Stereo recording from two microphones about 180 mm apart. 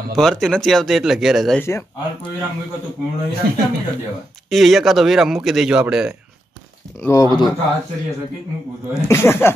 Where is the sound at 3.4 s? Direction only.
60° right (ahead or behind).